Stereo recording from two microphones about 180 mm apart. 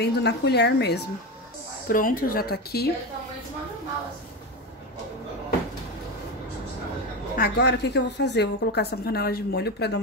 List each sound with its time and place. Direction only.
0.0 s a woman's voice: 70° left (ahead or behind)
1.9 s a woman's voice: 50° left (ahead or behind)
7.3 s a woman's voice: 60° left (ahead or behind)